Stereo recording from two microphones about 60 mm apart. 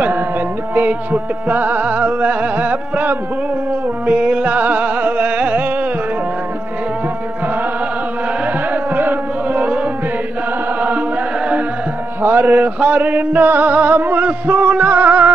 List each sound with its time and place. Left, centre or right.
0.7 s music: right
8.9 s carnatic music: right
10.8 s music: right